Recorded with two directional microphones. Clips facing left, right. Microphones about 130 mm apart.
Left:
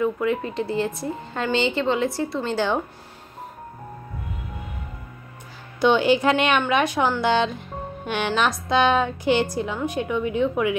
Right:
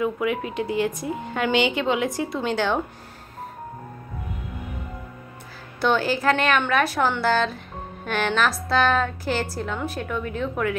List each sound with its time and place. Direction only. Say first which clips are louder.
0.0 s speech: left 1 dB; 10° right (ahead or behind)
2.5 s a woman's voice: even; 10° left (ahead or behind)
5.8 s a woman's voice: left 4 dB; 15° left (ahead or behind)